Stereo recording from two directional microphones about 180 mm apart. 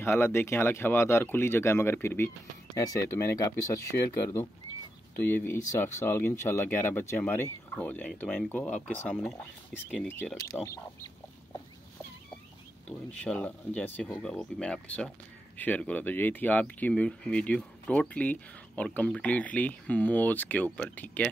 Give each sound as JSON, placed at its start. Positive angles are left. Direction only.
{"t": 0.0, "sound": "speech", "side_deg": 15}
{"t": 5.2, "sound": "speech", "side_deg": 10}
{"t": 13.2, "sound": "speech", "side_deg": 5}